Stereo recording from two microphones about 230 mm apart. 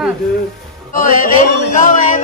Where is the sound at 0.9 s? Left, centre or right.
Left.